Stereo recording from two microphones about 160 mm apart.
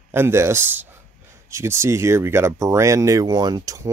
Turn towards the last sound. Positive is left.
turn(degrees=-25)  # may be behind; listen again after turning